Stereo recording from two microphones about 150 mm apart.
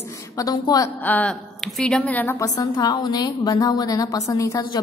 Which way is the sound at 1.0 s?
10° left (ahead or behind).